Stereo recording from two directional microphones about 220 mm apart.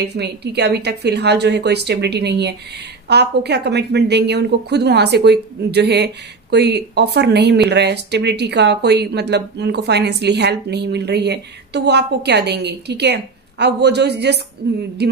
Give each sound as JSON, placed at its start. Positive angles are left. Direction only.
{"t": 0.0, "sound": "speech", "side_deg": -50}